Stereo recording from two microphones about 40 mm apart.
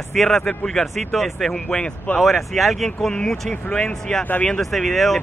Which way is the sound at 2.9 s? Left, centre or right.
Centre.